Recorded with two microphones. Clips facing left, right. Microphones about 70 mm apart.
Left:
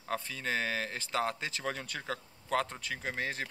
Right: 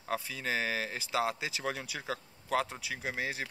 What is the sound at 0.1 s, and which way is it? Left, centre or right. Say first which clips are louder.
Speech: even; centre.